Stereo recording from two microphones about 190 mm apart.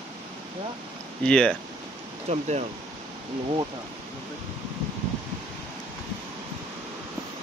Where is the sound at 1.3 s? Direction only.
5° left (ahead or behind).